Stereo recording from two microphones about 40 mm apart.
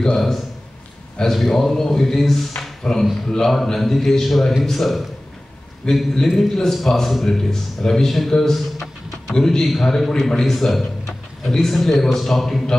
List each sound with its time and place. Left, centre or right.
1.2 s a man's voice: centre
5.8 s a man's voice: centre